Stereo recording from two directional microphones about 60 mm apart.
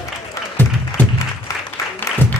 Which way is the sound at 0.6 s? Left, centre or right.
Left.